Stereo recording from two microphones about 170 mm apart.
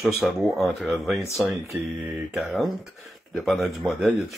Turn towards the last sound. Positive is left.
turn(degrees=0)  # may be behind; listen again after turning